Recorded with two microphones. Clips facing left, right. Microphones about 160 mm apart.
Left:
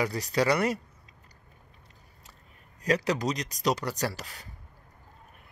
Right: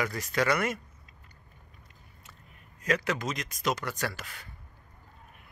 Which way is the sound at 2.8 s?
35° left (ahead or behind).